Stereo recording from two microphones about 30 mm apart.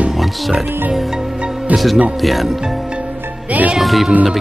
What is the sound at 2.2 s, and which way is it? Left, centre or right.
Music, centre.